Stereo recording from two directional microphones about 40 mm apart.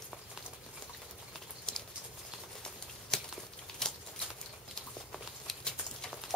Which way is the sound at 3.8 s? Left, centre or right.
Centre.